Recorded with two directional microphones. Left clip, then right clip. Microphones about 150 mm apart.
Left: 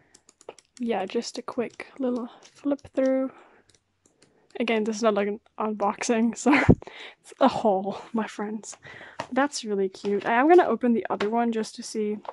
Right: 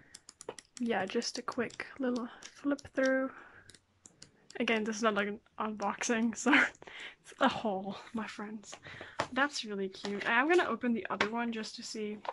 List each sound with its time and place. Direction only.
0.1 s typing: centre (ahead or behind)
0.8 s speech: 20° left (ahead or behind)
4.6 s speech: 25° left (ahead or behind); by 12.2 s 45° left (ahead or behind)